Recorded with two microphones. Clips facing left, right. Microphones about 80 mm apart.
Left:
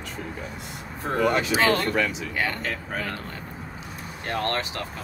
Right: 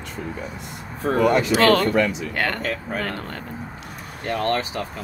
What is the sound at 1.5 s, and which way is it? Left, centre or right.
Speech, right.